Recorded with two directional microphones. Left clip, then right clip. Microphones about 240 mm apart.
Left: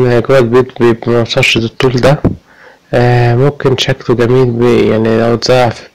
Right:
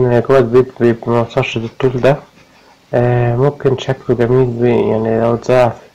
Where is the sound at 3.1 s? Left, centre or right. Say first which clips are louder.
Left 4 dB; left.